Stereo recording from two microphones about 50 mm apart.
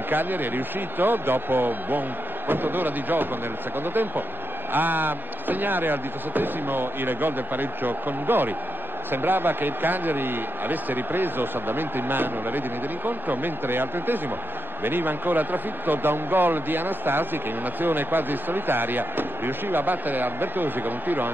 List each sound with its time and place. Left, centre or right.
0.1 s a man's voice: right